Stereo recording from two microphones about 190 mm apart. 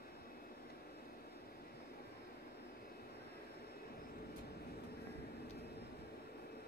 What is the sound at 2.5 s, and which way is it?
Vehicle, 55° left (ahead or behind).